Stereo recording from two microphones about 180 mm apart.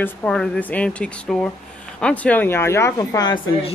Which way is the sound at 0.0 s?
5° left (ahead or behind).